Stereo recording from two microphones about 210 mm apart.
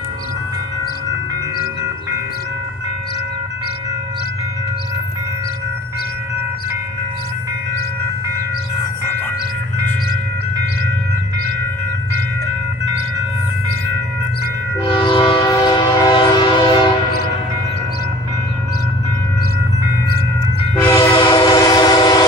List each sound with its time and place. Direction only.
14.8 s train: 25° left (ahead or behind)
20.7 s train: 15° left (ahead or behind)